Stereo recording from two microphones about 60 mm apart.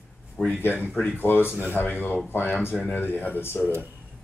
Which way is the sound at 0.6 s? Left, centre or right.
Left.